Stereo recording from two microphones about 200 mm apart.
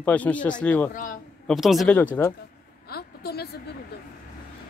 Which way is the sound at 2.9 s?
50° left (ahead or behind).